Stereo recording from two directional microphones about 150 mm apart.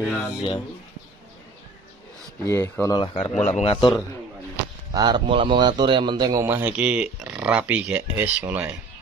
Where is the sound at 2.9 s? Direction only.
30° left (ahead or behind).